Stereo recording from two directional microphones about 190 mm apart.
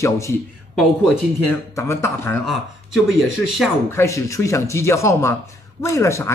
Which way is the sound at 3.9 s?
15° left (ahead or behind).